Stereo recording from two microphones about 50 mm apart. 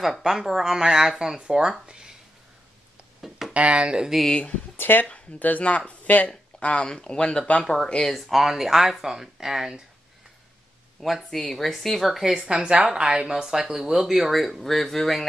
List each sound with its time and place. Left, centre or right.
0.2 s speech: centre
3.2 s a sound: centre
3.5 s speech: right
4.7 s speech: left
5.4 s speech: left; by 7.9 s centre
8.1 s speech: centre
11.0 s speech: centre
12.4 s speech: right; by 15.2 s centre